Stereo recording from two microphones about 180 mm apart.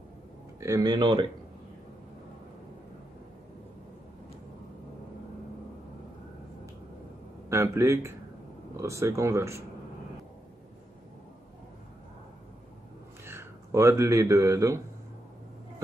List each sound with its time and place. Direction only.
0.6 s speech: 15° right (ahead or behind)
7.4 s speech: 15° right (ahead or behind)
13.2 s speech: 15° right (ahead or behind)